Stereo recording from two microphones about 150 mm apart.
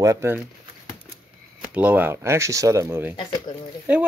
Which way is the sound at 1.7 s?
10° right (ahead or behind).